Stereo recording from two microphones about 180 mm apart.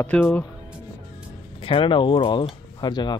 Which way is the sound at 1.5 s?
30° left (ahead or behind).